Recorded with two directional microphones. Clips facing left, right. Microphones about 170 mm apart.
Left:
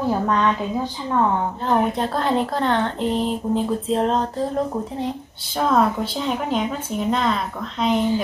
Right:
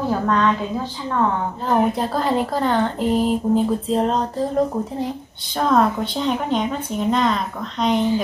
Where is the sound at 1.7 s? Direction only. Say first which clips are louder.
Right 2 dB; centre (ahead or behind).